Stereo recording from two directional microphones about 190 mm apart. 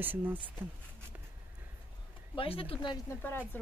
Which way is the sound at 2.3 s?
30° left (ahead or behind).